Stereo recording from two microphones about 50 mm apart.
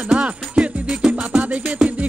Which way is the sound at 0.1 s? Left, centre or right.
Centre.